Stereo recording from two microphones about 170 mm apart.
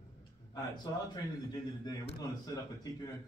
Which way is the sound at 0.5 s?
25° left (ahead or behind).